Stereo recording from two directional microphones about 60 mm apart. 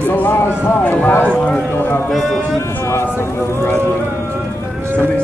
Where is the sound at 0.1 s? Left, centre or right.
Left.